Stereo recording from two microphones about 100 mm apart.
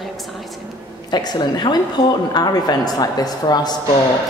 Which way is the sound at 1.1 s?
45° left (ahead or behind).